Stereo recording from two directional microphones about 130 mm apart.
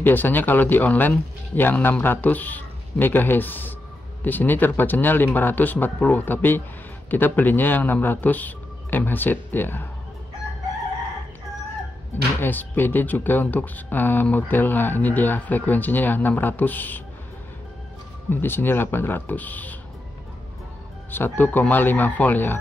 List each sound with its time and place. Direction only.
0.0 s speech: 15° left (ahead or behind)
12.4 s speech: 15° left (ahead or behind)
18.3 s speech: 15° left (ahead or behind)
21.1 s speech: 15° left (ahead or behind)